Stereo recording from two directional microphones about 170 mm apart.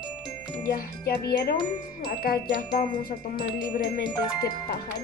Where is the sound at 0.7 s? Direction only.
65° left (ahead or behind).